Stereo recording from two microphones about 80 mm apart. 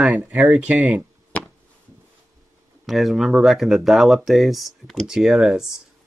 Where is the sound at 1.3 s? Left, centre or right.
Centre.